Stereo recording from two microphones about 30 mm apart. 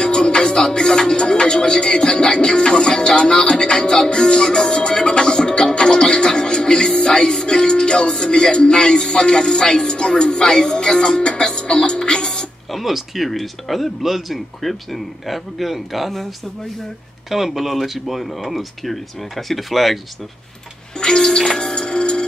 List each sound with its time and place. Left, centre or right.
0.0 s music: left
9.8 s speech: left
12.0 s music: left
12.7 s speech: centre
17.3 s speech: centre
21.0 s music: left